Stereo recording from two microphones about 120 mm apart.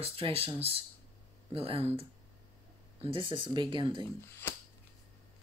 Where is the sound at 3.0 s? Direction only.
45° right (ahead or behind).